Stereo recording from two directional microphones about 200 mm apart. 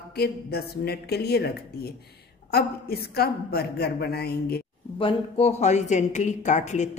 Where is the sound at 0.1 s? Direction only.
50° left (ahead or behind).